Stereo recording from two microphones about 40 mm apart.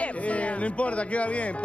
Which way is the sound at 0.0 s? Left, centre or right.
Left.